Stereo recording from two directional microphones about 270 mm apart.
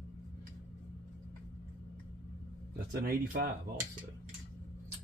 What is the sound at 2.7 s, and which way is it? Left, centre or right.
Speech, right.